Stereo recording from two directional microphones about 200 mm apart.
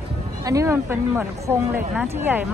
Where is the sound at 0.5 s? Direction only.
15° right (ahead or behind).